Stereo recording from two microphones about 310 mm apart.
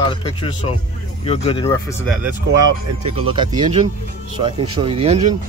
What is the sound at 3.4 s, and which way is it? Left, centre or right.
Speech, centre.